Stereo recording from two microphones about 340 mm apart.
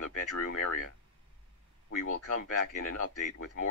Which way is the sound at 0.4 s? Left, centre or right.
Left.